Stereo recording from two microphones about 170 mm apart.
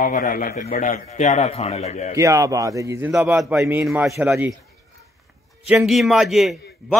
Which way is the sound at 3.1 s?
5° right (ahead or behind).